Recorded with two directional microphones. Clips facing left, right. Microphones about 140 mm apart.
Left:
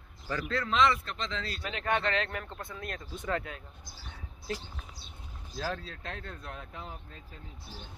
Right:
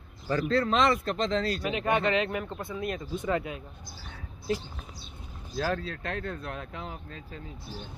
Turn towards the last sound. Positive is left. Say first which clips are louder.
# right 5 dB
turn(degrees=-90)